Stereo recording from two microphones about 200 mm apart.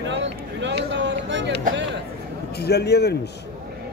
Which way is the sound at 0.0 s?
65° right (ahead or behind).